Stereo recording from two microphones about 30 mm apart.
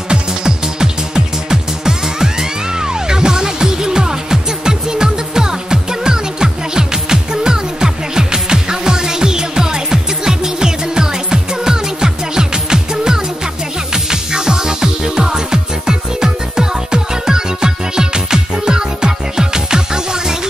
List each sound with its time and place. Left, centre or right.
0.1 s music: right